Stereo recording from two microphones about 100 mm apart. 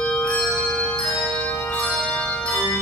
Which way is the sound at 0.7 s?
20° left (ahead or behind).